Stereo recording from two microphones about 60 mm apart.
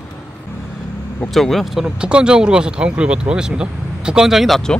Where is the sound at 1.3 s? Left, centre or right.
Centre.